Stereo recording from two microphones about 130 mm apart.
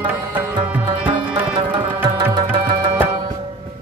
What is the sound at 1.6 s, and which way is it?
Music, 40° right (ahead or behind).